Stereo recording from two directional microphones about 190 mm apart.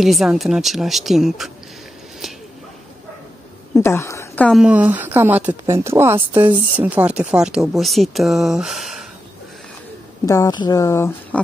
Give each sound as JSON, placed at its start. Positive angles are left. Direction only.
{"t": 0.0, "sound": "speech", "side_deg": 0}
{"t": 3.8, "sound": "a woman's voice", "side_deg": 15}
{"t": 4.5, "sound": "speech", "side_deg": -5}
{"t": 10.2, "sound": "speech", "side_deg": 15}